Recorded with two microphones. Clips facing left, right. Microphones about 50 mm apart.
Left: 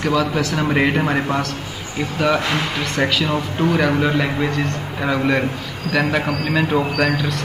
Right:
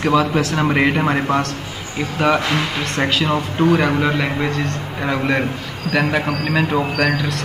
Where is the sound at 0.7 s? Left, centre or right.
Centre.